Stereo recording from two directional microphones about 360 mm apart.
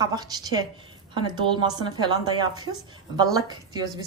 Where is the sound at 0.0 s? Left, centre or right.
Centre.